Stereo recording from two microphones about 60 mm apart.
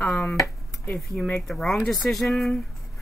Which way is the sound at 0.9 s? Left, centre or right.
Centre.